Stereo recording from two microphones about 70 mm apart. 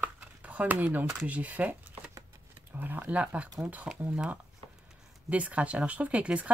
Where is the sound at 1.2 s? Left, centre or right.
Right.